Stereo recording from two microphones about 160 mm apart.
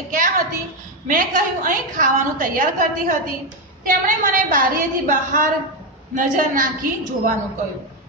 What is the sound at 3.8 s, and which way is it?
A woman's voice, 60° right (ahead or behind).